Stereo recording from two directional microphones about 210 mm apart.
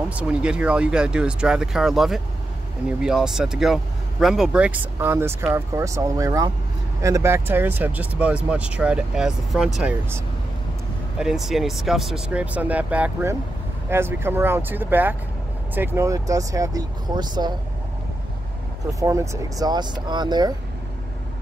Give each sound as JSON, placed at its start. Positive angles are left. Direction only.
{"t": 0.1, "sound": "speech", "side_deg": -5}
{"t": 18.9, "sound": "speech", "side_deg": -15}